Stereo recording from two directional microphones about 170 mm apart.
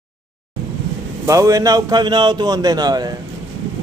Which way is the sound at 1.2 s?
20° right (ahead or behind).